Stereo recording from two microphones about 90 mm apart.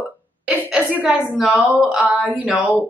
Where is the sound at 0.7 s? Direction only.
10° right (ahead or behind).